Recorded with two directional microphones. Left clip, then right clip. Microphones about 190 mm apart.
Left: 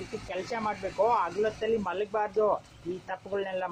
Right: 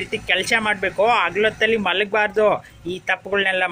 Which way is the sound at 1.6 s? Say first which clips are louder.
Right 11 dB; 20° right (ahead or behind).